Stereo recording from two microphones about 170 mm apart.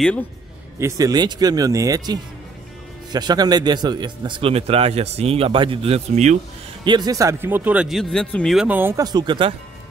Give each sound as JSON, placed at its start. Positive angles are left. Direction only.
{"t": 0.7, "sound": "speech", "side_deg": -20}
{"t": 6.8, "sound": "speech", "side_deg": -25}
{"t": 8.5, "sound": "speech", "side_deg": -10}
{"t": 9.0, "sound": "speech", "side_deg": -25}